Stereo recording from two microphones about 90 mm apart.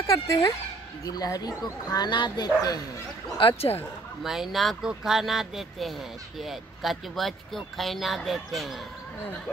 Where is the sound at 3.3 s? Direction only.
80° left.